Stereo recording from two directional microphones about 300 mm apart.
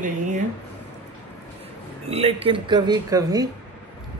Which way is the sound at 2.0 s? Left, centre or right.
Right.